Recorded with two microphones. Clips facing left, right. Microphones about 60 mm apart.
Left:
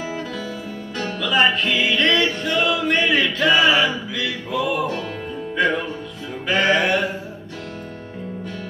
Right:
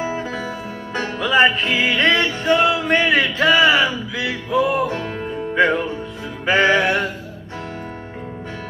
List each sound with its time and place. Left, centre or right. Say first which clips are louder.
0.0 s music: right 3 dB; right